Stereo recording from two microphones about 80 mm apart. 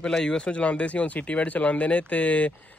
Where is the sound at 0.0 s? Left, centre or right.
Centre.